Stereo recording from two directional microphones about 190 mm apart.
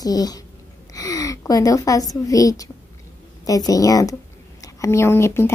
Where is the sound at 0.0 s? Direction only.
20° left (ahead or behind).